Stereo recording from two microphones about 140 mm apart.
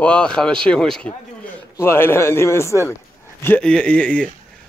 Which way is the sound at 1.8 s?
15° left (ahead or behind).